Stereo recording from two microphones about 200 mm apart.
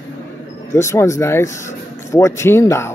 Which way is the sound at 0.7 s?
15° left (ahead or behind).